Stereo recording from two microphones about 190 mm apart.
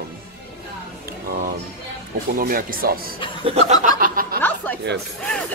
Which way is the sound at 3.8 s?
50° right (ahead or behind).